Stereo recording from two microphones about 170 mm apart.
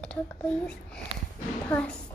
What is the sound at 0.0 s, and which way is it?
A child's voice, 5° left (ahead or behind).